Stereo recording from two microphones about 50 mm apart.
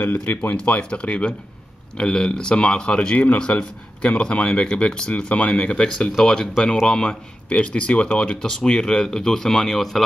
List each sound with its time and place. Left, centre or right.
0.0 s speech: left
0.6 s a man's voice: left
6.2 s a man's voice: centre
8.2 s speech: centre